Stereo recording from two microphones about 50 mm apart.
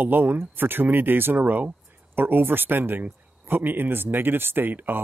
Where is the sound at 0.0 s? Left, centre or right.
Right.